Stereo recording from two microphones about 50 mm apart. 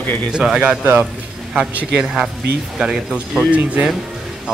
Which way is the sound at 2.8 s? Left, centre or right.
Centre.